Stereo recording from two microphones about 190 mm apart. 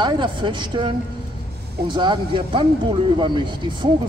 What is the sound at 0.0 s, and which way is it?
Speech, 25° right (ahead or behind).